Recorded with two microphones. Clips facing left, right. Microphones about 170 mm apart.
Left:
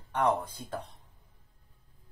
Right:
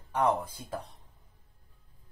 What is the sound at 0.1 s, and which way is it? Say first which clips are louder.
Speech: even; 10° right (ahead or behind).